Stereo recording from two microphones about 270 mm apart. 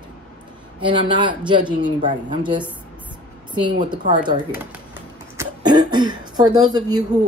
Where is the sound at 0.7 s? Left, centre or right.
Centre.